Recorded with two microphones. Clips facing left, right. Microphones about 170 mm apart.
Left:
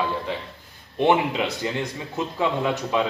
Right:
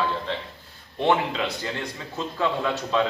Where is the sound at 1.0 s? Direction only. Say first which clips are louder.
Left 3 dB; 15° left (ahead or behind).